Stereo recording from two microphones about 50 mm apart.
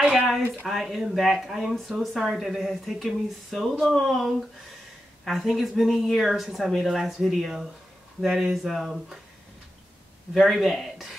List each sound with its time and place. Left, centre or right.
0.0 s a sound: centre
0.7 s speech: centre
10.3 s speech: centre